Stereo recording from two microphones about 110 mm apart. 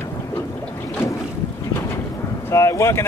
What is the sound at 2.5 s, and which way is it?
Speech, 25° left (ahead or behind).